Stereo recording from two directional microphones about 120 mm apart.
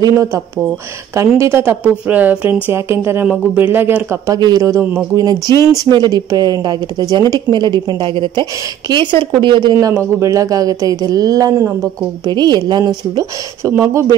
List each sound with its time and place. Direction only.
0.0 s speech: 25° right (ahead or behind)
1.4 s speech: 20° right (ahead or behind)
4.4 s speech: 30° right (ahead or behind)